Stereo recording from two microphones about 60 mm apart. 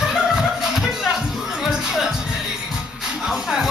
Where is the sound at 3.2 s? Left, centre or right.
Centre.